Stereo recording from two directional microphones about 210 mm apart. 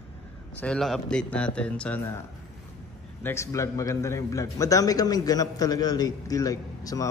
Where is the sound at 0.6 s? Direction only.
5° left (ahead or behind).